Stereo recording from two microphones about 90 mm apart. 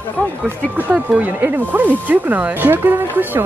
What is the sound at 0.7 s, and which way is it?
Speech, 15° right (ahead or behind).